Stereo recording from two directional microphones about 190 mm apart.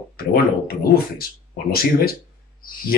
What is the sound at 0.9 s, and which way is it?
Speech, 50° left (ahead or behind).